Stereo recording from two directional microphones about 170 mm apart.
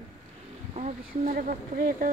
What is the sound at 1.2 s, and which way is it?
Speech, 55° right (ahead or behind).